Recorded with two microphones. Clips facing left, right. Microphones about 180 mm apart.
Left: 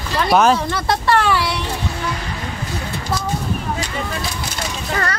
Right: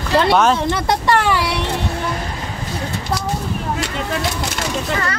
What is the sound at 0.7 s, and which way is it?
Speech, 15° right (ahead or behind).